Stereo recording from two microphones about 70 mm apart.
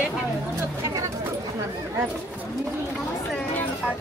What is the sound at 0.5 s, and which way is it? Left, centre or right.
Speech, right.